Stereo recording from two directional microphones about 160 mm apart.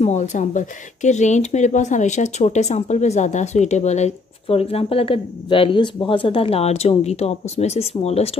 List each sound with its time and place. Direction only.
0.0 s speech: 45° left (ahead or behind)